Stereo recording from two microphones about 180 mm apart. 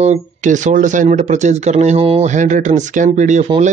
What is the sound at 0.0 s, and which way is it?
A man's voice, 40° right (ahead or behind).